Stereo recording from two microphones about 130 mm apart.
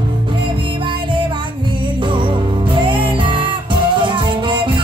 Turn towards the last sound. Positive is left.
turn(degrees=-40)  # may be behind; listen again after turning